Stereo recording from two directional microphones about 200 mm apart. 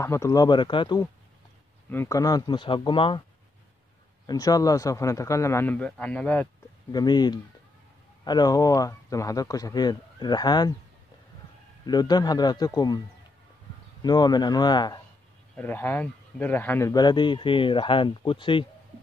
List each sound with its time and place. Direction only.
0.0 s a man's voice: 15° left (ahead or behind)
4.3 s speech: 20° left (ahead or behind)
6.9 s a man's voice: 20° left (ahead or behind)
11.8 s a man's voice: 20° left (ahead or behind)
14.0 s a man's voice: 20° left (ahead or behind)
15.5 s a man's voice: 10° left (ahead or behind); by 18.7 s 25° left (ahead or behind)